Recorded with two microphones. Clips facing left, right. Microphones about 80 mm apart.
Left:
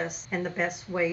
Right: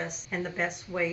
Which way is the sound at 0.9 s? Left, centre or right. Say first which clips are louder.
Left 3 dB; centre.